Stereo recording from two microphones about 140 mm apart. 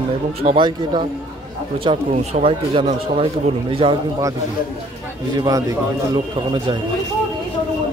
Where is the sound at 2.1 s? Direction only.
50° right (ahead or behind).